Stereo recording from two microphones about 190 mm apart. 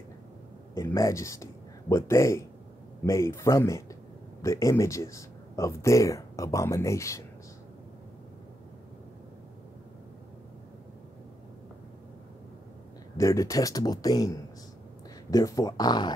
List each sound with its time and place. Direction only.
0.7 s speech: 15° left (ahead or behind)
13.2 s speech: 15° left (ahead or behind)